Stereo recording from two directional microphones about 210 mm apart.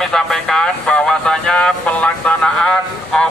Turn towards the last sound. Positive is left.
turn(degrees=5)  # may be behind; listen again after turning